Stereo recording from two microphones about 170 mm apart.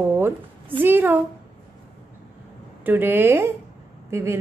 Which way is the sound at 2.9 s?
10° right (ahead or behind).